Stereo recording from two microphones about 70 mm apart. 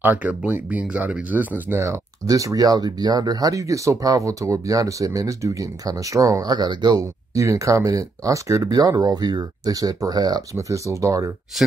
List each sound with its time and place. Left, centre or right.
0.0 s speech: right
1.8 s speech: right
6.4 s speech: right
7.3 s speech: right
10.5 s speech: right